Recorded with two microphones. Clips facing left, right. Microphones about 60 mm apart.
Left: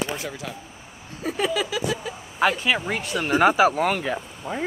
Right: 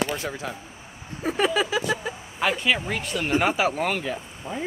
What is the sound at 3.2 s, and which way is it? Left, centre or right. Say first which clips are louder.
Speech: left 5 dB; left.